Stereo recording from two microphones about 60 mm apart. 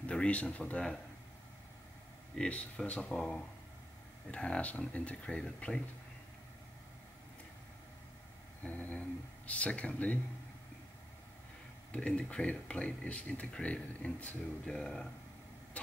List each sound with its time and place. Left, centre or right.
0.0 s speech: centre
2.3 s speech: centre
4.3 s speech: centre
8.6 s speech: left
11.9 s speech: centre